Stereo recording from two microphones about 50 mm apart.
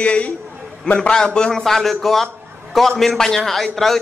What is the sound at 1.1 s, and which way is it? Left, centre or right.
Speech, centre.